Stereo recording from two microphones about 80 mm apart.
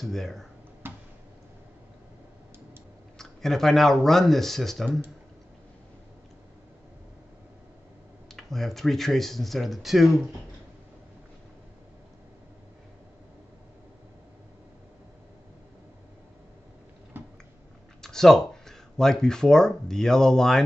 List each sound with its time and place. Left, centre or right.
0.0 s speech: centre
0.8 s a sound: right
3.2 s speech: centre
8.4 s speech: centre
17.1 s a sound: right
18.0 s speech: centre